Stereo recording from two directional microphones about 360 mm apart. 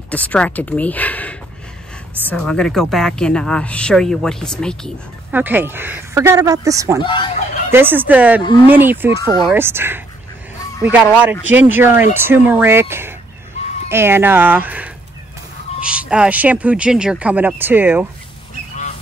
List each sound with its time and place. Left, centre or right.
0.1 s a woman's voice: centre
7.0 s speech: centre
7.7 s a woman's voice: centre
9.2 s speech: centre
9.5 s a woman's voice: centre